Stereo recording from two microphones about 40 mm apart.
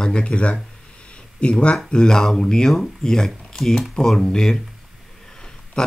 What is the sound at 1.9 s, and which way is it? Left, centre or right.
Speech, centre.